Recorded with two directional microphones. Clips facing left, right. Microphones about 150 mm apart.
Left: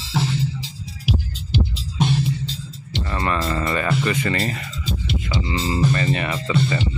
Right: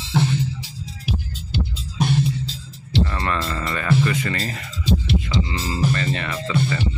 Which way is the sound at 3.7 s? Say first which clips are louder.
Right 3 dB; 25° left (ahead or behind).